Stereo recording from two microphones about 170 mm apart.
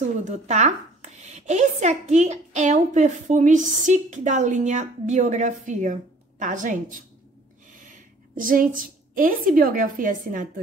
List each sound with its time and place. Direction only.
0.2 s speech: 45° right (ahead or behind)
8.4 s speech: 55° right (ahead or behind)